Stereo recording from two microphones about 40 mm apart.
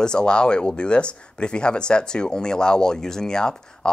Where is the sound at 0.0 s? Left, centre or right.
Left.